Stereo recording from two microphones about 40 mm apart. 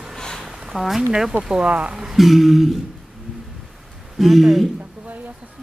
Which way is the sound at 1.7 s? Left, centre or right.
Right.